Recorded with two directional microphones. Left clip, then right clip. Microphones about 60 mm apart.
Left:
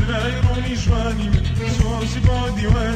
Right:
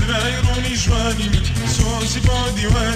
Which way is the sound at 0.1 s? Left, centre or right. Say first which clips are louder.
Right 3 dB; right.